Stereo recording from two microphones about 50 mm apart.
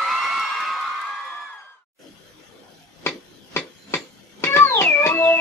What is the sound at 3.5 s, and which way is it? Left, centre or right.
Cat, left.